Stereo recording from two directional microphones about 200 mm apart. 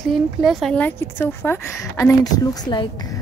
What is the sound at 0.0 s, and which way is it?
Speech, centre (ahead or behind).